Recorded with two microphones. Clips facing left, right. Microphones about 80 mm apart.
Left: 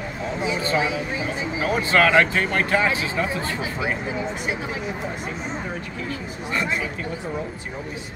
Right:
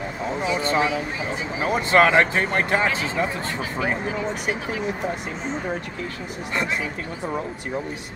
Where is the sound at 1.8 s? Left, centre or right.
Right.